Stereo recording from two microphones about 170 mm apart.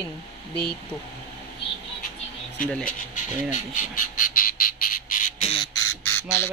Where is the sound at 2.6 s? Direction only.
5° left (ahead or behind).